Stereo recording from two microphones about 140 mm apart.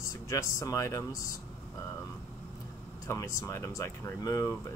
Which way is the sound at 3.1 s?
20° left (ahead or behind).